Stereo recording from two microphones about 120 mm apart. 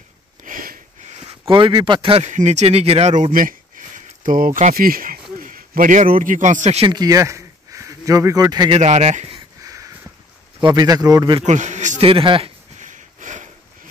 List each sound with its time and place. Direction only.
1.5 s speech: 40° right (ahead or behind)
2.2 s speech: 75° right (ahead or behind)
3.7 s a sound: 90° right
5.4 s a man's voice: 90° right; by 6.9 s 70° right (ahead or behind)
6.9 s speech: 30° right (ahead or behind)
8.7 s speech: 70° right (ahead or behind)
9.6 s crow: 30° right (ahead or behind)
10.6 s a man's voice: 35° right (ahead or behind)
11.4 s a man's voice: 80° right
12.0 s speech: 50° right (ahead or behind)
12.7 s a sound: 90° right